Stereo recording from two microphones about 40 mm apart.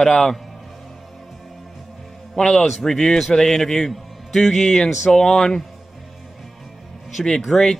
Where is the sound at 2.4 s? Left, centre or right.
Centre.